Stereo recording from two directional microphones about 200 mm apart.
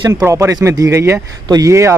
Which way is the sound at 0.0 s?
15° right (ahead or behind).